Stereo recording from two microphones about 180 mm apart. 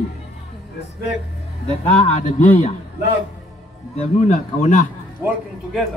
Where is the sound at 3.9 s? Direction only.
40° left (ahead or behind).